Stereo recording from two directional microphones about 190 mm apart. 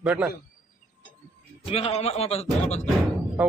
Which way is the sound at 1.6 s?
30° left (ahead or behind).